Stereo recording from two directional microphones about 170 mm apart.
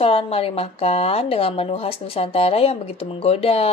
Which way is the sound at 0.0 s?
35° left (ahead or behind).